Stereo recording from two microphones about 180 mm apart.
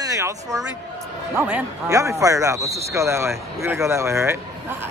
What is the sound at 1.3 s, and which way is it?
Speech, 5° right (ahead or behind).